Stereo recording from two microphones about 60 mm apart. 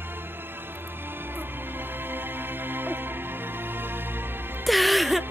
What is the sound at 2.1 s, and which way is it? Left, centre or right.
Music, right.